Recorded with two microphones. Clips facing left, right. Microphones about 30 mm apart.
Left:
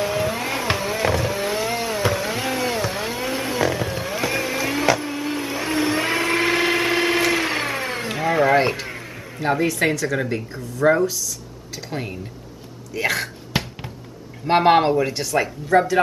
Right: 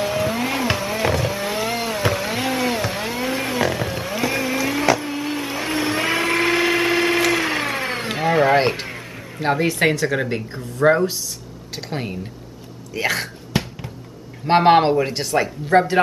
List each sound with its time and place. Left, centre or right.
0.0 s vehicle: centre
5.1 s blender: centre; by 8.8 s right
9.7 s speech: right
12.9 s speech: right
13.5 s a sound: centre
14.5 s speech: centre